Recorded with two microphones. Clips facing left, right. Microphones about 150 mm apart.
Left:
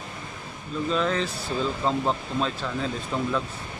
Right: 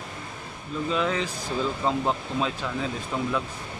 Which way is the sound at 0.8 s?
15° right (ahead or behind).